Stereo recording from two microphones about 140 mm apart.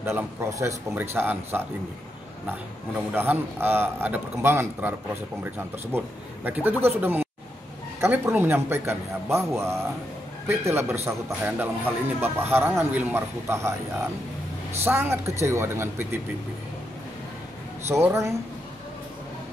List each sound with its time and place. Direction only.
0.0 s a man's voice: 20° right (ahead or behind)
3.1 s a man's voice: 15° right (ahead or behind)
14.8 s a man's voice: 15° right (ahead or behind)
17.8 s speech: 20° right (ahead or behind)